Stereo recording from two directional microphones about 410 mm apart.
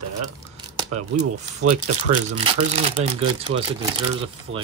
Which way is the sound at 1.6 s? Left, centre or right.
Right.